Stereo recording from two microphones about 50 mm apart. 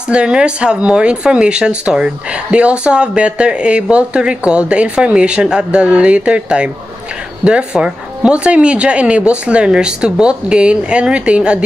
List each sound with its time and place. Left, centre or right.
0.1 s speech: centre